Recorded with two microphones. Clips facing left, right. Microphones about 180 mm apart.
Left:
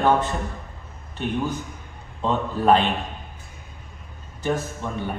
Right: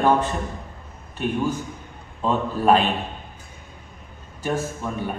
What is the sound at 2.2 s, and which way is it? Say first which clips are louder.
Speech: right 1 dB; 10° right (ahead or behind).